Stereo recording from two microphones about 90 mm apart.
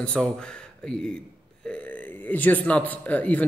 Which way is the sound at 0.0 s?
10° left (ahead or behind).